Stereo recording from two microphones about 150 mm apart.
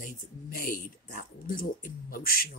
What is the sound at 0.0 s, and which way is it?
Speech, 70° left (ahead or behind).